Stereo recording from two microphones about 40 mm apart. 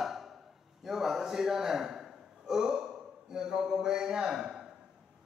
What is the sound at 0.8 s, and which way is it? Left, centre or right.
A man's voice, centre.